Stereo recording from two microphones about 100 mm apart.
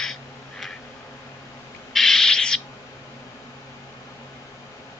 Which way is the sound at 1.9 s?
5° left (ahead or behind).